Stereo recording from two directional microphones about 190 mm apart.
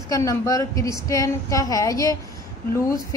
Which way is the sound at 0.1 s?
15° left (ahead or behind).